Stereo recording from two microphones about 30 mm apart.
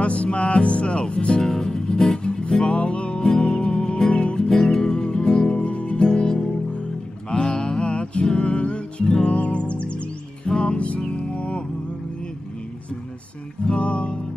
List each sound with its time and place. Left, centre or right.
0.0 s music: left
1.4 s music: centre
2.6 s music: left
3.2 s music: left
4.5 s music: centre
5.7 s music: left
5.9 s music: left
7.8 s music: left
13.7 s music: left